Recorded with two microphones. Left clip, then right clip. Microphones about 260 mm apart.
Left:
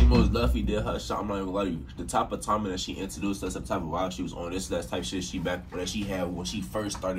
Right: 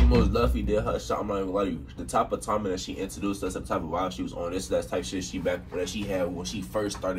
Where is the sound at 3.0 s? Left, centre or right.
Centre.